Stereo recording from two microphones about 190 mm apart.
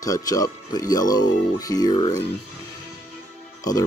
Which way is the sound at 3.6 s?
20° left (ahead or behind).